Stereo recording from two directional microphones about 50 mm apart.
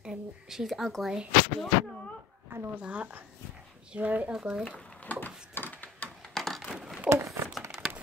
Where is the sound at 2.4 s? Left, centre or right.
Right.